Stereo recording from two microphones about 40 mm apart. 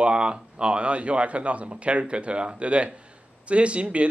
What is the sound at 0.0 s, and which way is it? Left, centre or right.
Speech, right.